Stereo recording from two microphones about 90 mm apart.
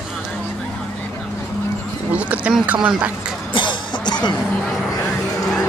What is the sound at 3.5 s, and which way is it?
Music, 60° left (ahead or behind).